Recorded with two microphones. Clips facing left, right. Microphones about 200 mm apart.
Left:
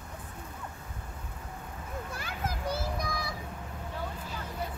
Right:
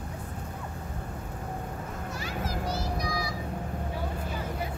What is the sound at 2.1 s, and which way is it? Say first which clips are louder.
Children playing: right 6 dB; 55° left (ahead or behind).